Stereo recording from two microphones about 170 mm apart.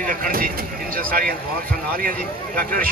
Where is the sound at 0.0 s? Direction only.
55° right (ahead or behind).